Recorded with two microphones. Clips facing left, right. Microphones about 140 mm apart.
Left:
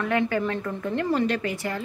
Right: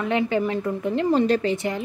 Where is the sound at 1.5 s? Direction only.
20° right (ahead or behind).